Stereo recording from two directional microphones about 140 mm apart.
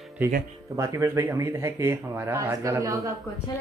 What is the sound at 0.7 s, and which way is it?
Speech, 20° right (ahead or behind).